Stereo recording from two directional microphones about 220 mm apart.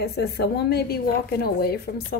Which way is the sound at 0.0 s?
45° left (ahead or behind).